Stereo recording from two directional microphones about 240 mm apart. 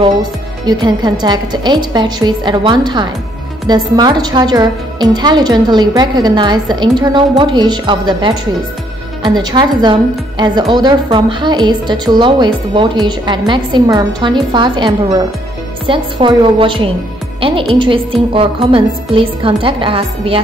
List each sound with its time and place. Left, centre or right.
0.0 s a woman's voice: centre